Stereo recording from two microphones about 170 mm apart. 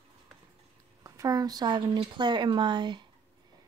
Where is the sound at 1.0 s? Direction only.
20° right (ahead or behind).